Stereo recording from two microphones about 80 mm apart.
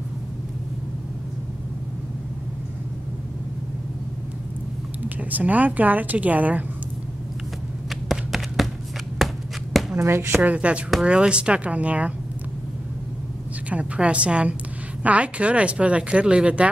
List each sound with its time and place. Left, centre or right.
5.0 s a woman's voice: right
7.9 s a sound: centre
9.9 s speech: right
10.4 s speech: centre
13.7 s speech: centre